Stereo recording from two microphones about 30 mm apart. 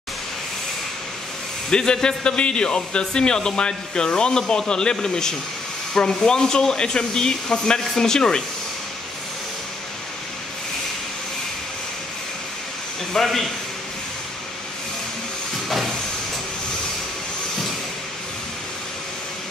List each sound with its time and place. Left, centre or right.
1.7 s speech: left
13.1 s speech: centre